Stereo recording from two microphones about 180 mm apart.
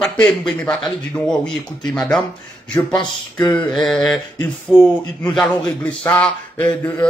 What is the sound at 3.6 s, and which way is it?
Speech, 5° left (ahead or behind).